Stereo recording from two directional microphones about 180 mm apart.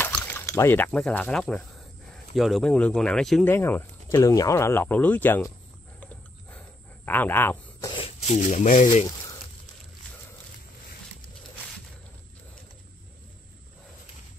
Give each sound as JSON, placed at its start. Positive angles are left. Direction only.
{"t": 0.0, "sound": "speech", "side_deg": 10}
{"t": 3.5, "sound": "speech", "side_deg": 15}
{"t": 7.1, "sound": "speech", "side_deg": 10}
{"t": 8.3, "sound": "speech", "side_deg": 40}